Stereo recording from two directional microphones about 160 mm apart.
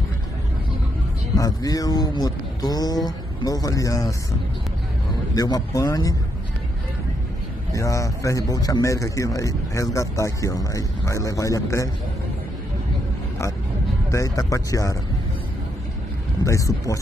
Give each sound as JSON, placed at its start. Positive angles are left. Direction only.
{"t": 1.3, "sound": "speech", "side_deg": 20}
{"t": 5.3, "sound": "speech", "side_deg": 25}
{"t": 7.7, "sound": "speech", "side_deg": 20}
{"t": 14.1, "sound": "speech", "side_deg": 20}
{"t": 16.4, "sound": "speech", "side_deg": 20}